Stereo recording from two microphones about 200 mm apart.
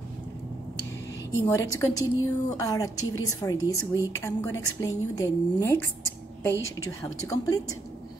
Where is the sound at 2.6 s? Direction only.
15° left (ahead or behind).